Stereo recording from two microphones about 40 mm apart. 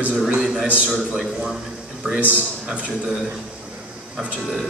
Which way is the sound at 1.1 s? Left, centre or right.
Centre.